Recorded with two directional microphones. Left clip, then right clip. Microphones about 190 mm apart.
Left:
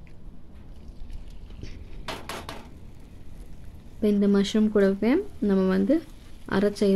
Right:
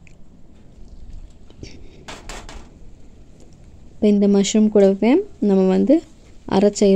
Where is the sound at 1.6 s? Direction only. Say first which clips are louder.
Right 7 dB; 20° right (ahead or behind).